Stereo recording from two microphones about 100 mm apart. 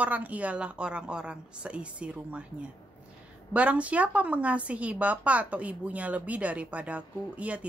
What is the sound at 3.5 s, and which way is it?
A woman's voice, 15° right (ahead or behind).